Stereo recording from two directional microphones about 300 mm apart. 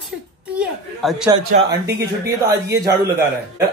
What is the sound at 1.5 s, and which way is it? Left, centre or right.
Speech, right.